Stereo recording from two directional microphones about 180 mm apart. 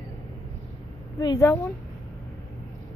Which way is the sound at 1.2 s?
20° left (ahead or behind).